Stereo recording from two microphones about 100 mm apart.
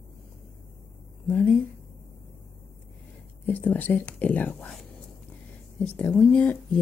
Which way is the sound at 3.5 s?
15° left (ahead or behind).